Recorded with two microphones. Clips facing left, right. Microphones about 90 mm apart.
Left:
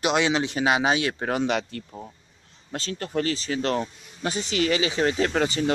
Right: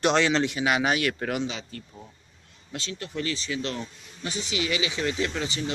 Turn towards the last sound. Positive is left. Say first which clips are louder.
# left 6 dB
turn(degrees=45)  # may be behind; listen again after turning